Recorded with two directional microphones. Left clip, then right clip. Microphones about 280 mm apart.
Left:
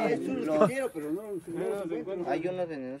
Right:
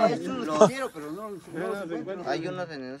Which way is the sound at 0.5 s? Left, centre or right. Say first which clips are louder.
Right 5 dB; centre.